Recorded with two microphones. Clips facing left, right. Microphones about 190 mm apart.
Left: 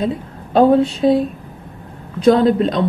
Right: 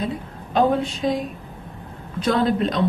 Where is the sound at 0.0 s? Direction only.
30° left (ahead or behind).